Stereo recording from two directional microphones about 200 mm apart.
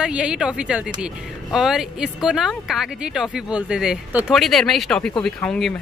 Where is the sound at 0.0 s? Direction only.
5° right (ahead or behind).